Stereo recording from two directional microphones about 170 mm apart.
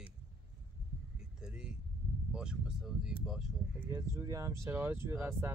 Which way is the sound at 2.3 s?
5° right (ahead or behind).